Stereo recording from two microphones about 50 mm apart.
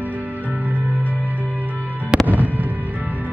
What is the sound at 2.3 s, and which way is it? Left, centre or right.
Fireworks, right.